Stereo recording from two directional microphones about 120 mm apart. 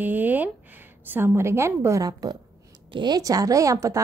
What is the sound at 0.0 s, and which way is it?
A woman's voice, 15° right (ahead or behind).